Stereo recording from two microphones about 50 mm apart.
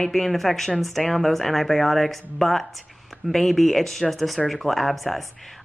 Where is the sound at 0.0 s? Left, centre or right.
Centre.